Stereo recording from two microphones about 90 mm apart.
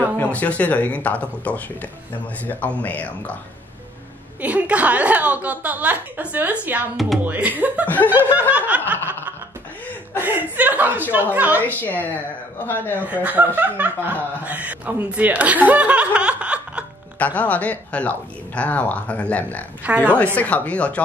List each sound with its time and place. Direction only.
0.2 s speech: 15° left (ahead or behind)
4.4 s speech: 15° right (ahead or behind)
7.8 s speech: 20° left (ahead or behind)
8.2 s snicker: 20° right (ahead or behind)
10.2 s speech: 20° right (ahead or behind)
11.6 s speech: 20° left (ahead or behind)
13.0 s speech: 20° right (ahead or behind)
17.4 s speech: 15° left (ahead or behind)
19.8 s speech: 15° right (ahead or behind)
20.3 s speech: 15° left (ahead or behind)